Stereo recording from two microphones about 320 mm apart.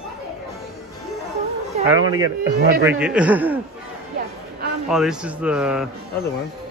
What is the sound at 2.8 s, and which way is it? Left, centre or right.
Speech, centre.